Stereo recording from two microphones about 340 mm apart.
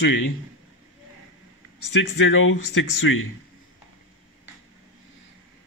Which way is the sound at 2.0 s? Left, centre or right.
Left.